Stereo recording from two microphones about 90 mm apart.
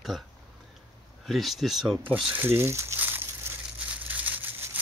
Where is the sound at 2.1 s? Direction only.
15° right (ahead or behind).